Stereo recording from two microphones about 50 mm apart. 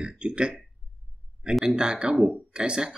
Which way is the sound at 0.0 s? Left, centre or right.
Centre.